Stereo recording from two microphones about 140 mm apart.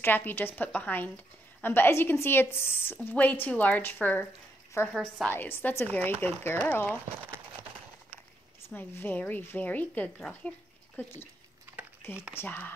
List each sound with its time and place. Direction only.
0.0 s a woman's voice: 15° left (ahead or behind)
4.9 s a woman's voice: centre (ahead or behind)
5.3 s a woman's voice: 15° left (ahead or behind)
8.6 s a woman's voice: 15° left (ahead or behind)